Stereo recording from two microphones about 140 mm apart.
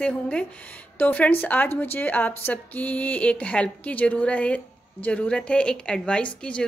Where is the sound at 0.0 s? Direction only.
5° left (ahead or behind).